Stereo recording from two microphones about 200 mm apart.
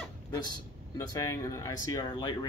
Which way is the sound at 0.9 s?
15° left (ahead or behind).